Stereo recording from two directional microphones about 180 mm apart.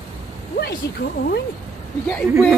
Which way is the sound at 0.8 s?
65° left (ahead or behind).